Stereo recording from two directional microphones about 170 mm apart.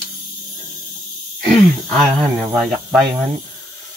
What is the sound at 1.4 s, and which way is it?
Speech, centre (ahead or behind).